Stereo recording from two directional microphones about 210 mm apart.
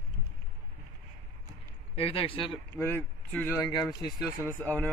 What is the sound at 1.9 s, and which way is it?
Speech, 25° left (ahead or behind).